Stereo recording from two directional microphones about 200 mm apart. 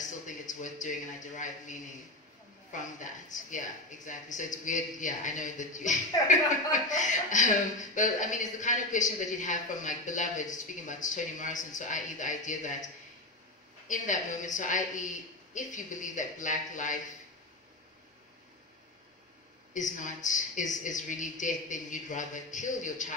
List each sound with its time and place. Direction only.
0.5 s a woman's voice: 40° left (ahead or behind)
13.8 s a woman's voice: 40° left (ahead or behind)
19.7 s a woman's voice: 40° left (ahead or behind)